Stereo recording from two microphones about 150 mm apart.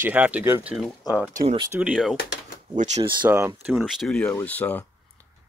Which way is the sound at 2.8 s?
50° right (ahead or behind).